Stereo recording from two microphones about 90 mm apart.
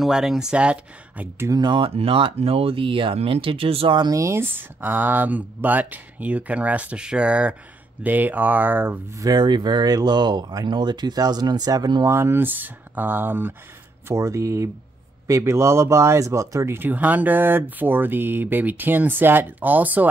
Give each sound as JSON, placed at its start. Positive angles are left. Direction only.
{"t": 0.0, "sound": "speech", "side_deg": -5}
{"t": 1.5, "sound": "speech", "side_deg": -55}
{"t": 4.0, "sound": "speech", "side_deg": -35}
{"t": 9.1, "sound": "speech", "side_deg": -45}
{"t": 12.1, "sound": "speech", "side_deg": -30}
{"t": 14.0, "sound": "speech", "side_deg": -35}